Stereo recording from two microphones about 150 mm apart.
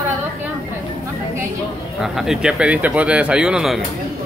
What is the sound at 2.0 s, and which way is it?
Speech, 5° right (ahead or behind).